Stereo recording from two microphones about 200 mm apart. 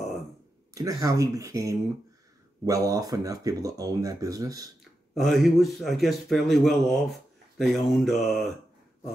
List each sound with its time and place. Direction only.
0.7 s speech: 15° right (ahead or behind)
5.1 s speech: centre (ahead or behind)